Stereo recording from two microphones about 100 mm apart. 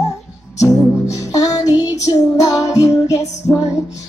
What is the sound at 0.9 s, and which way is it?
Music, 30° left (ahead or behind).